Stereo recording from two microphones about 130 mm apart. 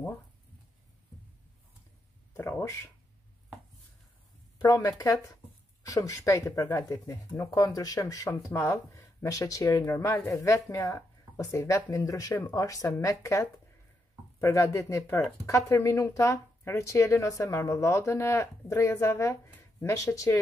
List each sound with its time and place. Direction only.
2.3 s speech: 15° left (ahead or behind)
4.6 s speech: 25° left (ahead or behind)